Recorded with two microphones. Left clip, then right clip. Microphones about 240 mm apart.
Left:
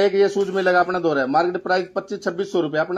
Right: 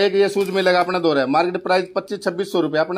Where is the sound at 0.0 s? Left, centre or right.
Right.